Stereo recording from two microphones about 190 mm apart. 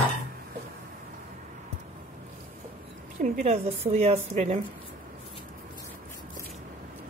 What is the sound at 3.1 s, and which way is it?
A woman's voice, 35° right (ahead or behind).